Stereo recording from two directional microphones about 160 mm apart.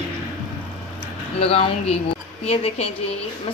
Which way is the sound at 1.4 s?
40° left (ahead or behind).